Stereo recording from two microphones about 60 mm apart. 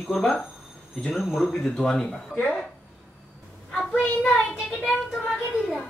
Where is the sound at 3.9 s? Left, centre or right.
Left.